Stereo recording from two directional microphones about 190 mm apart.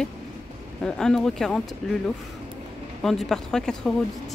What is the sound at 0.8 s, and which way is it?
Speech, 5° left (ahead or behind).